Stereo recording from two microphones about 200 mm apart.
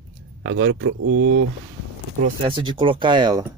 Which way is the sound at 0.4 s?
65° right (ahead or behind).